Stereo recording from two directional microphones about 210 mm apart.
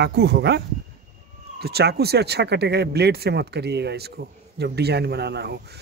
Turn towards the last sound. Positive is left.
turn(degrees=-50)  # may be behind; listen again after turning